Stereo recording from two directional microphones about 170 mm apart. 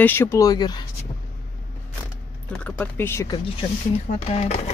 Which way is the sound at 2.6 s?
10° left (ahead or behind).